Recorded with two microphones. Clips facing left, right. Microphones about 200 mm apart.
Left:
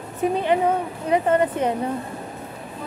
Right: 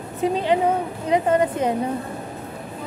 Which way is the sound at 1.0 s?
20° right (ahead or behind).